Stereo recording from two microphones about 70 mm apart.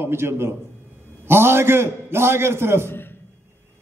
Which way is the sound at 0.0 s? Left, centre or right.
Right.